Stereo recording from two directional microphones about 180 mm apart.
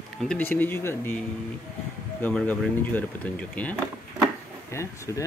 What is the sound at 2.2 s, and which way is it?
Speech, 10° left (ahead or behind).